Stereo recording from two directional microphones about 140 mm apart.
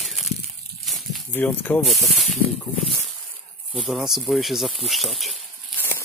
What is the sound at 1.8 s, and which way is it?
Speech, centre (ahead or behind).